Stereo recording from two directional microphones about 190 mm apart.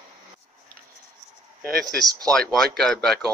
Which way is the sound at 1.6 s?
55° right (ahead or behind).